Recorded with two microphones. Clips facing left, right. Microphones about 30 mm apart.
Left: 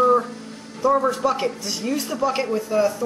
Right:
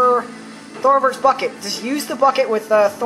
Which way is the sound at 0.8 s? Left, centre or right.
Right.